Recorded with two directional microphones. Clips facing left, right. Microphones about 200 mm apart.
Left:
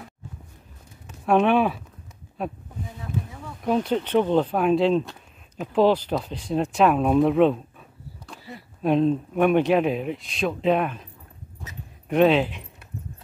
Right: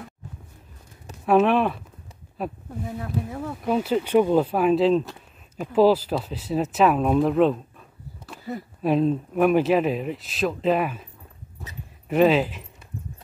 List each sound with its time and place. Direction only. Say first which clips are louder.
1.2 s speech: even; centre (ahead or behind)
3.0 s a sound: right 3 dB; 60° right (ahead or behind)
3.6 s speech: even; 5° right (ahead or behind)
8.8 s speech: left 1 dB; centre (ahead or behind)
11.6 s a sound: right 1 dB; 5° right (ahead or behind)
12.1 s speech: even; 5° right (ahead or behind)